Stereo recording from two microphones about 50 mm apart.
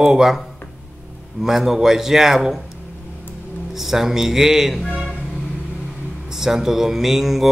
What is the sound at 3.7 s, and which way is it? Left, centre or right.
Speech, centre.